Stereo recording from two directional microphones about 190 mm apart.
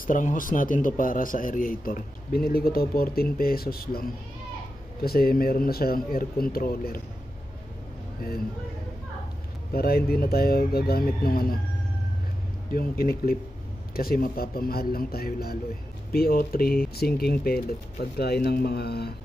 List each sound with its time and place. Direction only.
0.0 s speech: 45° left (ahead or behind)
5.0 s speech: 55° left (ahead or behind)
9.7 s speech: 55° left (ahead or behind)
12.7 s speech: 50° left (ahead or behind)